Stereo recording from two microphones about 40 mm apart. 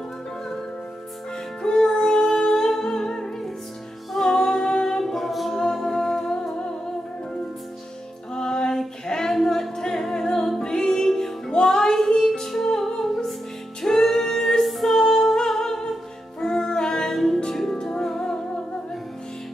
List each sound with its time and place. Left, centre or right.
1.6 s music: centre
4.3 s music: centre
5.0 s a capella: centre
5.6 s humming: centre
8.4 s a capella: centre
10.6 s music: centre